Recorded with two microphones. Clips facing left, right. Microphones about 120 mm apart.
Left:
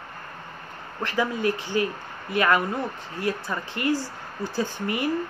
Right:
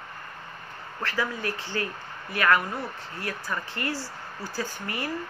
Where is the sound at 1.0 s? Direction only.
20° left (ahead or behind).